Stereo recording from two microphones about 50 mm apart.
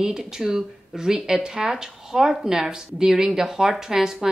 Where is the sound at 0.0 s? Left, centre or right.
Centre.